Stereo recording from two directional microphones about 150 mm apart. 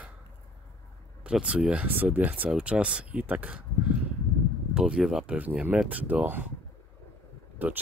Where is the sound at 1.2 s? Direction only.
10° right (ahead or behind).